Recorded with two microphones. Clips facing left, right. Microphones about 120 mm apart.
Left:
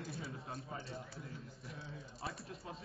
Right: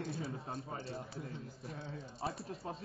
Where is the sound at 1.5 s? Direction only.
Centre (ahead or behind).